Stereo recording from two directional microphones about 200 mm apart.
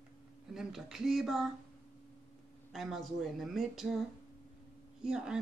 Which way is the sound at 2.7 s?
Centre (ahead or behind).